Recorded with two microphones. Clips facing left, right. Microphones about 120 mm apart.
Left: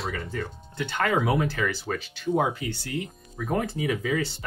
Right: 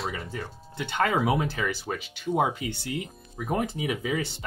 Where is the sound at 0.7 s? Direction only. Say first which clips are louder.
Even; 20° right (ahead or behind).